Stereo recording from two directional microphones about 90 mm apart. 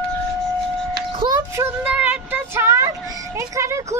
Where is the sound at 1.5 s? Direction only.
30° right (ahead or behind).